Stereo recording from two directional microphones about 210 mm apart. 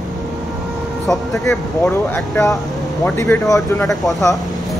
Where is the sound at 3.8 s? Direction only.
Centre (ahead or behind).